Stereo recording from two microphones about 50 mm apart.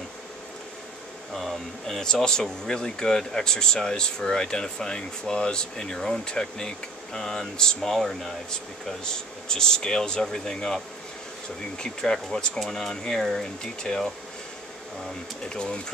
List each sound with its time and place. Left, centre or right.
1.3 s speech: centre
11.8 s speech: centre
15.4 s speech: centre